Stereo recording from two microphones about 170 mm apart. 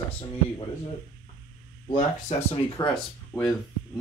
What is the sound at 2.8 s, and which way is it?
Speech, 20° left (ahead or behind).